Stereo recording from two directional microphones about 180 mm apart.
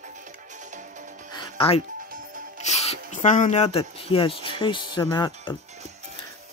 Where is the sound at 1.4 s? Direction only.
30° left (ahead or behind).